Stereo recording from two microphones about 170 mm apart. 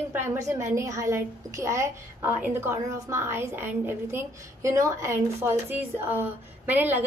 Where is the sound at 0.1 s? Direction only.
15° right (ahead or behind).